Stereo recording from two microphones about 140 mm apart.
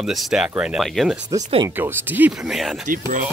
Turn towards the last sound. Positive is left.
turn(degrees=-70)  # may be behind; listen again after turning